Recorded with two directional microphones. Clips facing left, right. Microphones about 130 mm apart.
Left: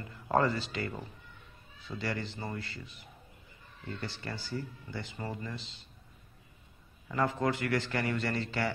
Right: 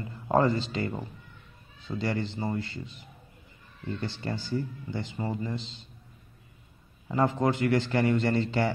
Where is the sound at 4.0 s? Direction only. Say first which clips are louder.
Right 6 dB; 25° right (ahead or behind).